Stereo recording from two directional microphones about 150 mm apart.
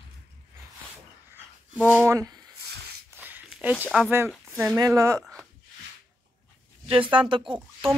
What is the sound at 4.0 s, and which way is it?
Speech, 15° right (ahead or behind).